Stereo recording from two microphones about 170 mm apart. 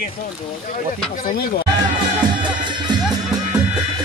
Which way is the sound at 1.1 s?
60° left (ahead or behind).